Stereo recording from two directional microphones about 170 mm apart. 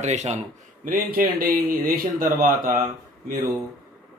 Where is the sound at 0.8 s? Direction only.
55° right (ahead or behind).